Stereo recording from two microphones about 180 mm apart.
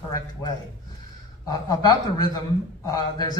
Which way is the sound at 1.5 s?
20° left (ahead or behind).